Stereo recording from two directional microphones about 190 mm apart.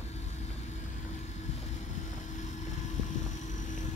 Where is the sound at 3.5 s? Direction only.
40° left (ahead or behind).